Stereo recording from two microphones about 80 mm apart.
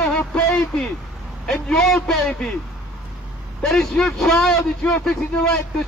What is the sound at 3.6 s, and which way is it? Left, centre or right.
A man's voice, centre.